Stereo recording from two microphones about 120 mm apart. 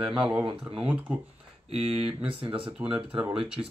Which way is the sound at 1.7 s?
55° right (ahead or behind).